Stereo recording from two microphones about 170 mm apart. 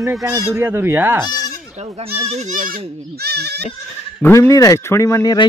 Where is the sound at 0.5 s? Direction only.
15° right (ahead or behind).